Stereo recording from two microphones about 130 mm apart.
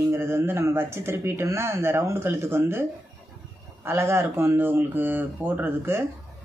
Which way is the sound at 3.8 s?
20° right (ahead or behind).